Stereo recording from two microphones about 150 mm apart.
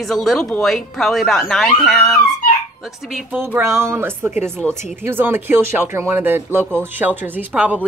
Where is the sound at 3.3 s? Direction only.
10° right (ahead or behind).